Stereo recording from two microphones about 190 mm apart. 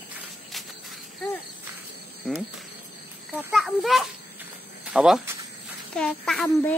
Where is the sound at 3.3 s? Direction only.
Centre (ahead or behind).